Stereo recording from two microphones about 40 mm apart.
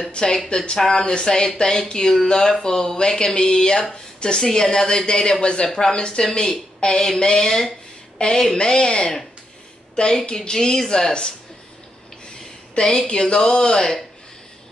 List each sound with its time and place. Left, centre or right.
0.1 s a woman's voice: centre
5.4 s a woman's voice: left
12.7 s a woman's voice: centre